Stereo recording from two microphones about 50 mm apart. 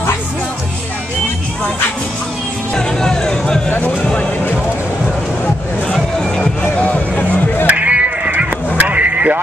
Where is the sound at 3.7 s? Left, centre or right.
Left.